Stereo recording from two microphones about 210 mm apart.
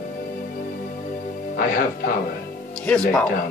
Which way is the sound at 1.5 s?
45° left (ahead or behind).